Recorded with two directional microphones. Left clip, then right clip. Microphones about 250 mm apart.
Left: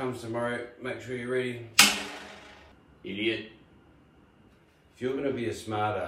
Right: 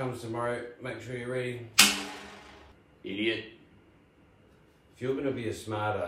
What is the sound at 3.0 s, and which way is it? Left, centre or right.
Speech, centre.